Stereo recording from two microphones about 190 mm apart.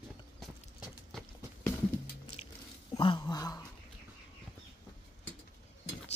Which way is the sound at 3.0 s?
25° left (ahead or behind).